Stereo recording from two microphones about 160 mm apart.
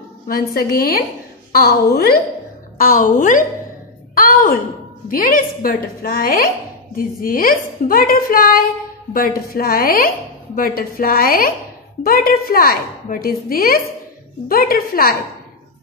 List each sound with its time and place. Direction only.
0.6 s a woman's voice: 65° left (ahead or behind)
2.8 s a woman's voice: 60° left (ahead or behind)